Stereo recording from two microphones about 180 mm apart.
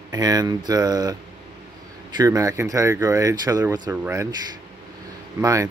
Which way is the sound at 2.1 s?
20° right (ahead or behind).